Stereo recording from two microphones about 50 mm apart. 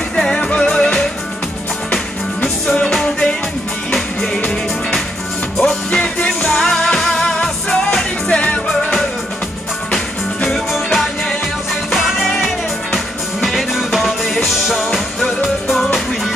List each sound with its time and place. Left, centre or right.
0.1 s music: centre
2.4 s music: centre
8.3 s music: left
9.9 s music: centre